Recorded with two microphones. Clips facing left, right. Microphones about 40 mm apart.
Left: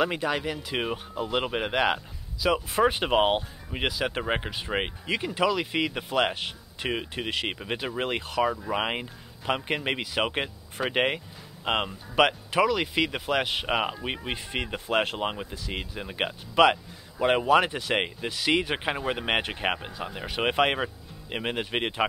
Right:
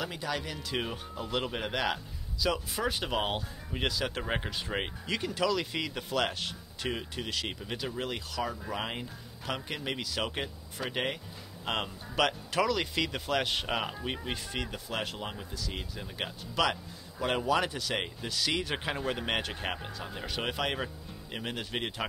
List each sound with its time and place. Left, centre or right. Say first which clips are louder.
0.0 s speech: left 8 dB; left
20.4 s speech: left 10 dB; left